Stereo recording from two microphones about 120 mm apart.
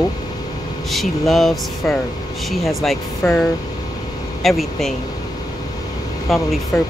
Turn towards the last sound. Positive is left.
turn(degrees=20)  # may be behind; listen again after turning